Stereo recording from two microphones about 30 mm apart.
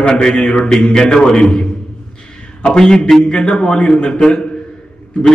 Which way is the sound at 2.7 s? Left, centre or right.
Left.